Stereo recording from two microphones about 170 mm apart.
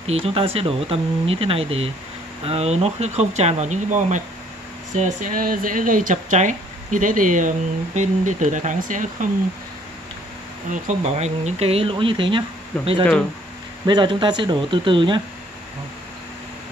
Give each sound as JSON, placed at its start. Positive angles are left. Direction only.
{"t": 0.0, "sound": "speech", "side_deg": -35}
{"t": 10.7, "sound": "speech", "side_deg": -45}